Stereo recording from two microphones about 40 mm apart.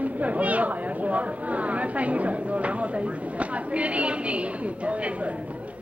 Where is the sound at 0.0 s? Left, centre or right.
Right.